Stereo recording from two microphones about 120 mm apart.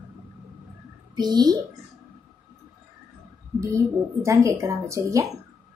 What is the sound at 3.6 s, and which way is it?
A woman's voice, 25° right (ahead or behind).